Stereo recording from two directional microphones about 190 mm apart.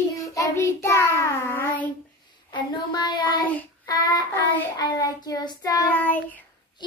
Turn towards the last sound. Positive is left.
turn(degrees=10)  # may be behind; listen again after turning